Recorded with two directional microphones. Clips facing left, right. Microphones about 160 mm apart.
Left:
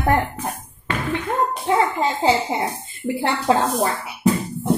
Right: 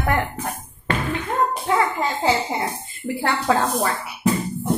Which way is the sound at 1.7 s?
25° left (ahead or behind).